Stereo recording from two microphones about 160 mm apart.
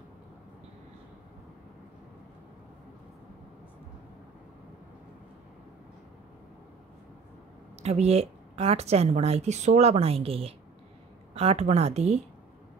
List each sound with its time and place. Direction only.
7.8 s a woman's voice: 40° right (ahead or behind)